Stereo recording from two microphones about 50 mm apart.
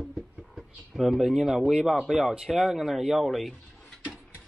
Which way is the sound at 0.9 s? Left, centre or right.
Centre.